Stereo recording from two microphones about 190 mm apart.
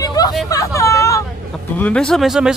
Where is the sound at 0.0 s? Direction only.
20° left (ahead or behind).